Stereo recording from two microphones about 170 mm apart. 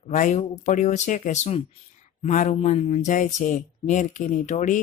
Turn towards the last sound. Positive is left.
turn(degrees=45)  # may be behind; listen again after turning